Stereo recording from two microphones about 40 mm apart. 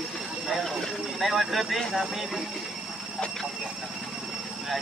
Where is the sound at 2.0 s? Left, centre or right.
Centre.